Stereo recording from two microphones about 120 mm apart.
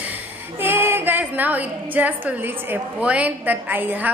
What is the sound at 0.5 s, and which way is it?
A woman's voice, 20° right (ahead or behind).